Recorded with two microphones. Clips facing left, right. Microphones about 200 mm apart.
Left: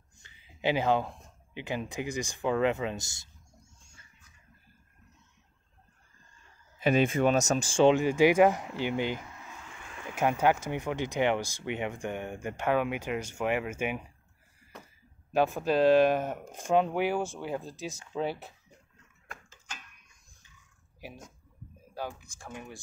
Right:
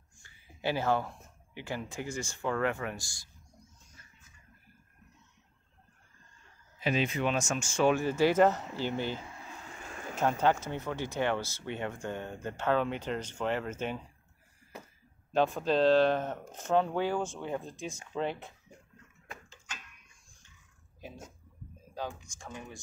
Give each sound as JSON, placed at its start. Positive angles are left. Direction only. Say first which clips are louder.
{"t": 0.2, "sound": "a sound", "louder": "left 4 dB", "side_deg": 20}
{"t": 6.8, "sound": "speech", "louder": "left 5 dB", "side_deg": 50}
{"t": 7.9, "sound": "speech", "louder": "left 4 dB", "side_deg": 15}
{"t": 9.2, "sound": "a sound", "louder": "right 1 dB", "side_deg": -35}
{"t": 10.1, "sound": "speech", "louder": "left 2 dB", "side_deg": 10}
{"t": 15.3, "sound": "speech", "louder": "left 1 dB", "side_deg": 10}